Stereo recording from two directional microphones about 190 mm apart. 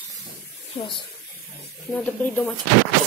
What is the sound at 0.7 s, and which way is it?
Speech, 25° left (ahead or behind).